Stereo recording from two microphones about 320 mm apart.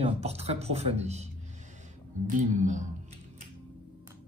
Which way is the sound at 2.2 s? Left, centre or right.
Right.